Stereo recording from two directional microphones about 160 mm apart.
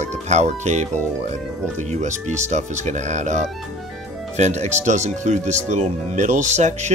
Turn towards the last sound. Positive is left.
turn(degrees=-45)  # may be behind; listen again after turning